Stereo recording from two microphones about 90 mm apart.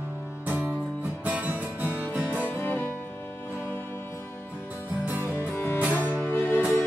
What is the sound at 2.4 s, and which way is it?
Music, 25° left (ahead or behind).